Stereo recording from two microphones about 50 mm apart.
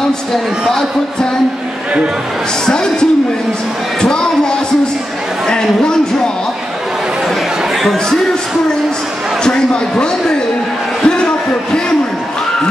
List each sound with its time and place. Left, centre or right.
2.6 s speech: centre
4.0 s a sound: centre
5.5 s speech: centre
7.8 s a man's voice: centre
9.4 s a man's voice: centre
11.1 s a sound: centre